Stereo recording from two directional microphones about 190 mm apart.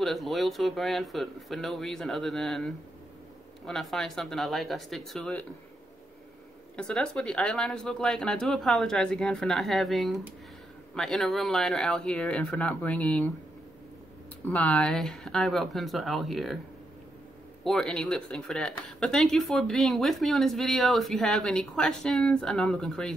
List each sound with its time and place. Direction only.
0.0 s speech: centre (ahead or behind)
6.8 s speech: 5° left (ahead or behind)
14.5 s speech: 5° left (ahead or behind)
17.6 s speech: 5° left (ahead or behind)